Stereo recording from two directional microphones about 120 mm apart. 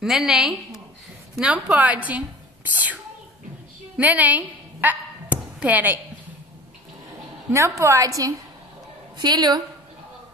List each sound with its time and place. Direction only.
0.0 s a woman's voice: 5° right (ahead or behind)
3.9 s a sound: 15° right (ahead or behind)
7.5 s a woman's voice: 25° right (ahead or behind)